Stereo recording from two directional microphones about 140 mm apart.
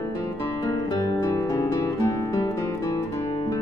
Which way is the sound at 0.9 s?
25° left (ahead or behind).